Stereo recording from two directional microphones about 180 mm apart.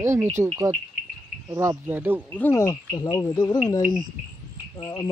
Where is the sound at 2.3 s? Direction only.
10° left (ahead or behind).